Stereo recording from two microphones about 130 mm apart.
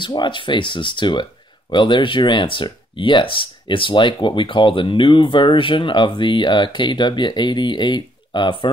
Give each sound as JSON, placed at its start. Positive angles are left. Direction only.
{"t": 0.0, "sound": "speech", "side_deg": 40}